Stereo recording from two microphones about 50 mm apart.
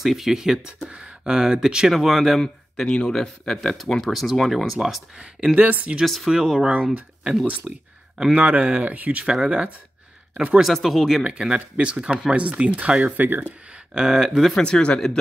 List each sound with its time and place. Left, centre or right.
0.0 s speech: centre
0.8 s speech: right; by 2.4 s centre
2.4 s speech: centre
5.2 s speech: centre
5.6 s speech: right
6.2 s speech: centre
6.7 s speech: right
8.4 s speech: right
9.2 s speech: centre
10.6 s speech: centre
11.2 s speech: centre
13.2 s speech: right
13.9 s speech: centre
14.5 s speech: centre